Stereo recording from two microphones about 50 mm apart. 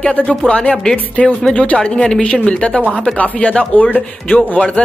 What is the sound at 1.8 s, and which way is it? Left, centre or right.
Speech, centre.